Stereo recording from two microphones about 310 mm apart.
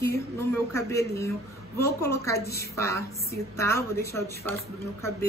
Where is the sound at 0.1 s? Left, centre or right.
Centre.